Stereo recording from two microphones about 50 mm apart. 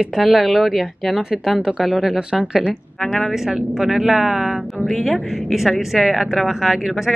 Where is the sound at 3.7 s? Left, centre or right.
Centre.